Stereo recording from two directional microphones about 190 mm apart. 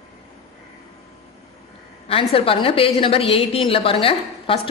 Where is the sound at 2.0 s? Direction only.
30° left (ahead or behind).